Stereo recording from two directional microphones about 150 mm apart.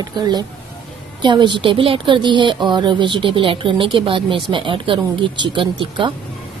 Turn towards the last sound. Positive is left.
turn(degrees=-35)  # may be behind; listen again after turning